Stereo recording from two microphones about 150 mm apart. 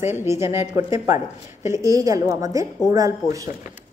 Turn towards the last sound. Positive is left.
turn(degrees=-20)  # may be behind; listen again after turning